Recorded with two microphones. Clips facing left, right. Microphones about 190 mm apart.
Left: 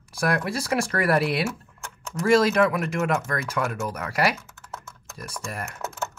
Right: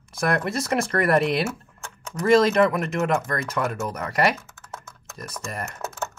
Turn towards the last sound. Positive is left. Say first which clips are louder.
# right 1 dB
turn(degrees=5)  # may be behind; listen again after turning